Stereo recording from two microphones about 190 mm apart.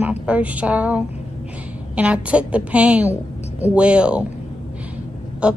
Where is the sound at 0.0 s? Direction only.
5° right (ahead or behind).